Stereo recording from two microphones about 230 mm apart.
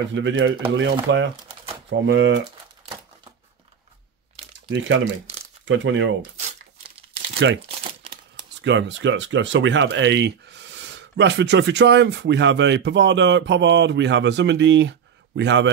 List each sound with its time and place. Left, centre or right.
0.1 s speech: right
4.6 s speech: right
8.6 s speech: right